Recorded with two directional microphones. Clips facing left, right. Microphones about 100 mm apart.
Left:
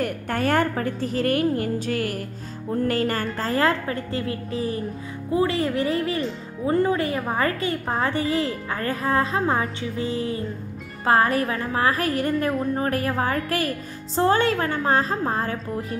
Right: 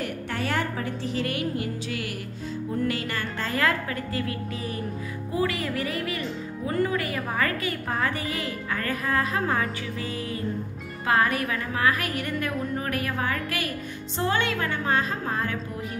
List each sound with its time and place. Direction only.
0.0 s a woman's voice: 50° left (ahead or behind)